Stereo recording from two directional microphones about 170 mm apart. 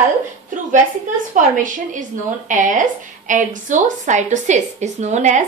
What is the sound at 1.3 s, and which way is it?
A woman's voice, 50° right (ahead or behind).